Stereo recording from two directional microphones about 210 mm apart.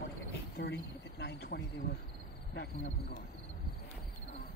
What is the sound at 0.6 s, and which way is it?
Cricket, 50° left (ahead or behind).